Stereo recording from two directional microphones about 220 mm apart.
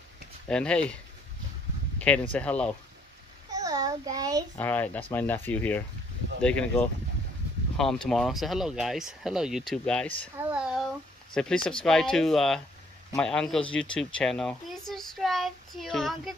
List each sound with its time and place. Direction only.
0.5 s speech: 5° left (ahead or behind)
2.0 s a sound: 5° left (ahead or behind)
2.3 s speech: 5° left (ahead or behind)
3.5 s child singing: 15° right (ahead or behind)
4.6 s speech: 10° left (ahead or behind)
10.5 s a sound: 5° right (ahead or behind)
11.3 s a child's voice: 5° left (ahead or behind)